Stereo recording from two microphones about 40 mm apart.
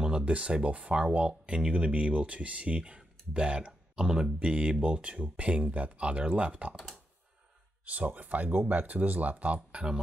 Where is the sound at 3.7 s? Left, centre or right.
Centre.